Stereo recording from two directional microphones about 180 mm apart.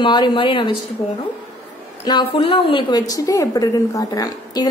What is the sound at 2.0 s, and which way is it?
A woman's voice, 30° left (ahead or behind).